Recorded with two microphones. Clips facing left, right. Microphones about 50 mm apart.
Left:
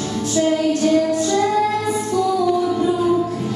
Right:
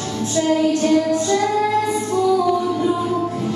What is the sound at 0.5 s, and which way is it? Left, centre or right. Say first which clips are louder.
Music: right 1 dB; right.